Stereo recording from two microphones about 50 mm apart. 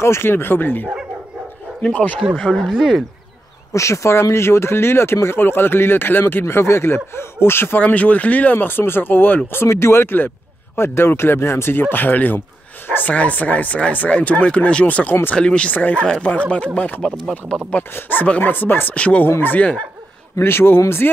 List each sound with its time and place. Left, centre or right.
0.0 s speech: left
1.8 s speech: left
2.5 s speech: centre
3.7 s speech: left
7.8 s speech: left
9.5 s speech: left
13.1 s speech: left
18.9 s speech: left
20.3 s speech: left
21.0 s speech: left